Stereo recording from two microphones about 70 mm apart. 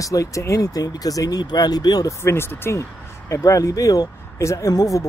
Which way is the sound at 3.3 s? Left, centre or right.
Left.